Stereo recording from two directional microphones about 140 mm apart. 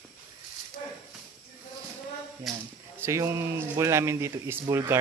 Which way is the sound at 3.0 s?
20° right (ahead or behind).